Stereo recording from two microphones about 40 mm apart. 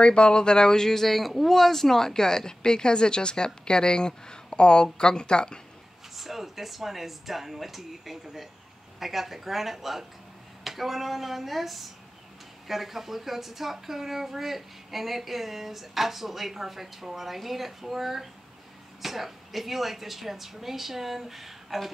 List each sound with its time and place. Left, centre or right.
0.0 s speech: left
6.1 s speech: centre